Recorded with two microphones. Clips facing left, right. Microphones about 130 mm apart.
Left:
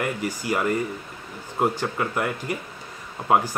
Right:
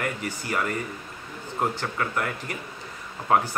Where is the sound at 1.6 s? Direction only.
15° left (ahead or behind).